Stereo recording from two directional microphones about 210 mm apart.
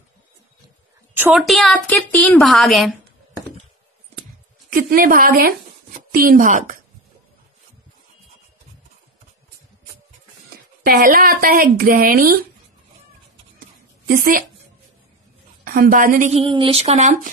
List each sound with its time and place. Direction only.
1.1 s a woman's voice: 5° right (ahead or behind)
4.6 s speech: 40° right (ahead or behind)
10.8 s speech: 40° right (ahead or behind)
14.0 s a woman's voice: 40° right (ahead or behind)
15.6 s a woman's voice: 45° right (ahead or behind)